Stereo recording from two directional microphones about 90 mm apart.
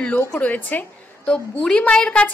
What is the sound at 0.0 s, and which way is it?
A woman's voice, 15° left (ahead or behind).